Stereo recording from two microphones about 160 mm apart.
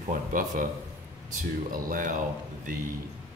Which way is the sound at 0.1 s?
60° right (ahead or behind).